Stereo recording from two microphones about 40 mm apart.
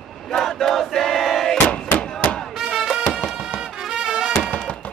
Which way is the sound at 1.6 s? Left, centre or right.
Left.